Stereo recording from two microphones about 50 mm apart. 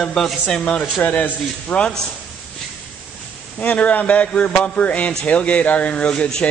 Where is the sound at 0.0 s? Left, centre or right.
Centre.